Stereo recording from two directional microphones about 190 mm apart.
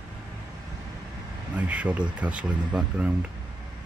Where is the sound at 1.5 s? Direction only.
5° right (ahead or behind).